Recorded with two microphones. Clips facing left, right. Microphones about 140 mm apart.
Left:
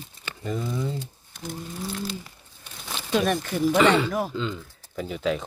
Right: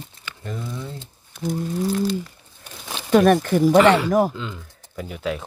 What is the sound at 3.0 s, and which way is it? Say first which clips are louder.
Speech: right 9 dB; 55° right (ahead or behind).